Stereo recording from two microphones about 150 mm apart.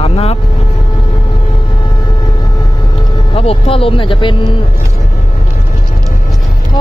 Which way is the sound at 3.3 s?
40° left (ahead or behind).